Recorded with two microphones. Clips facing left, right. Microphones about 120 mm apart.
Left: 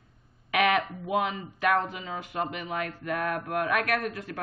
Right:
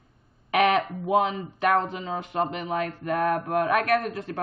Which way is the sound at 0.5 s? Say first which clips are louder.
Right 3 dB; 30° right (ahead or behind).